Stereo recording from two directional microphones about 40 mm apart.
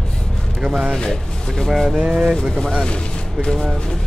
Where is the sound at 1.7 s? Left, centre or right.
Centre.